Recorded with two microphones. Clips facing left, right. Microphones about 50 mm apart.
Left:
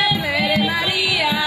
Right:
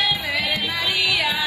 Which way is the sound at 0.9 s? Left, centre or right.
Centre.